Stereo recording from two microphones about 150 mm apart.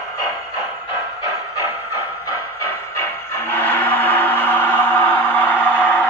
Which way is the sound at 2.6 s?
15° left (ahead or behind).